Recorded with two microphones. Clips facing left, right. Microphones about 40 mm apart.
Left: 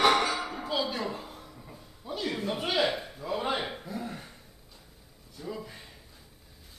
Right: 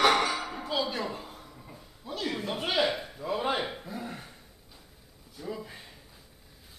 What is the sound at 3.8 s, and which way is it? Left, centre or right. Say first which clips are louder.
Throat clearing: left 1 dB; centre.